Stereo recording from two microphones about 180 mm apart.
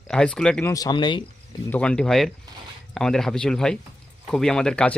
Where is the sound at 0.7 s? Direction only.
20° left (ahead or behind).